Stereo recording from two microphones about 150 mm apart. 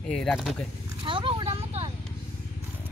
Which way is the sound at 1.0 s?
35° right (ahead or behind).